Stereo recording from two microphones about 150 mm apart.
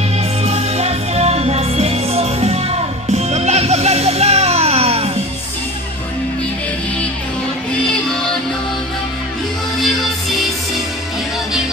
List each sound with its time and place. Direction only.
0.4 s music: 45° right (ahead or behind)